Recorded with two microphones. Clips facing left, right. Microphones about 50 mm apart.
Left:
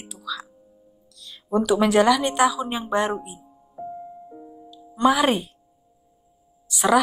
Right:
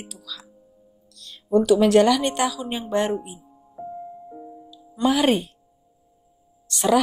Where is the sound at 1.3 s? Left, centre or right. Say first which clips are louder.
Right 3 dB; centre.